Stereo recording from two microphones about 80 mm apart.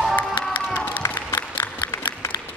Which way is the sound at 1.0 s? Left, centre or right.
Left.